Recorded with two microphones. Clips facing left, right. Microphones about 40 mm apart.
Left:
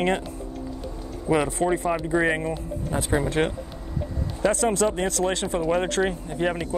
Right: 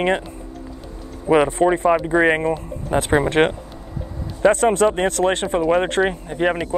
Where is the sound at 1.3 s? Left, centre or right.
Right.